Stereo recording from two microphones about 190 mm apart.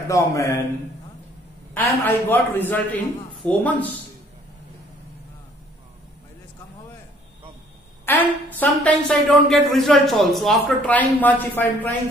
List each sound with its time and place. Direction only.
0.1 s speech: 15° left (ahead or behind)
1.7 s speech: 10° left (ahead or behind)
8.0 s speech: 10° left (ahead or behind)